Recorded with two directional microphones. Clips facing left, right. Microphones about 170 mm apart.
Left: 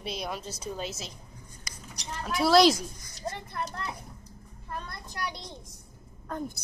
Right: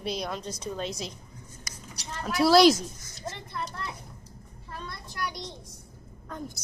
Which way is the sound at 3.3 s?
50° left (ahead or behind).